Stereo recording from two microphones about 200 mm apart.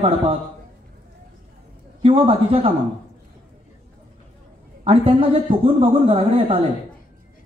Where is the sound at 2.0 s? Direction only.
30° right (ahead or behind).